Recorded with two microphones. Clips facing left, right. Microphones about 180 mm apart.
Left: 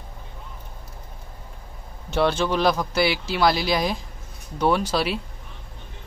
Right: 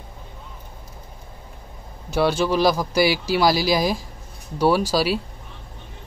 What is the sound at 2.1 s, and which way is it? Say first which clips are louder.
Speech: right 2 dB; 10° right (ahead or behind).